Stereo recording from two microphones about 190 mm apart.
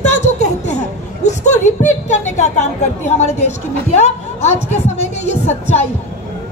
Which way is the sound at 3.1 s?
35° left (ahead or behind).